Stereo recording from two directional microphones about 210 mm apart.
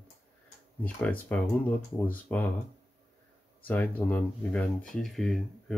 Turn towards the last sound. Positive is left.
turn(degrees=0)  # may be behind; listen again after turning